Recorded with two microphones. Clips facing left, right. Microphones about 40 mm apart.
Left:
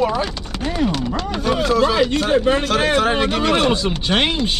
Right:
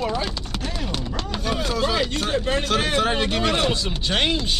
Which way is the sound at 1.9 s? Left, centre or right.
Left.